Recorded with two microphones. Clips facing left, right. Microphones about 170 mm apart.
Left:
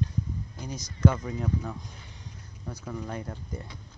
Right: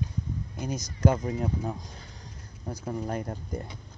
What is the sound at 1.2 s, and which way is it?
Speech, 35° right (ahead or behind).